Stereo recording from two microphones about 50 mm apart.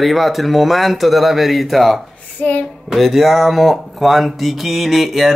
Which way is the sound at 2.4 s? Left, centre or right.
Left.